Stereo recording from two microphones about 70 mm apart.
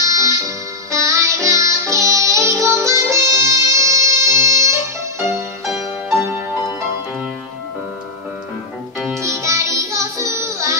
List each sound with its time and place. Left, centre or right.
0.0 s music: right
5.7 s music: centre
9.2 s music: right